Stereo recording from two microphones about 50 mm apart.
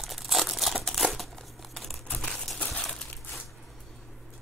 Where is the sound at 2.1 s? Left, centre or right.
Centre.